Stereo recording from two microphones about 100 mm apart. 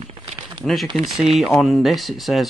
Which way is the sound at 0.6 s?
Centre (ahead or behind).